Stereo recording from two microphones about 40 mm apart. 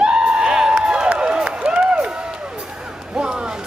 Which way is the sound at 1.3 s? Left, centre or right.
Right.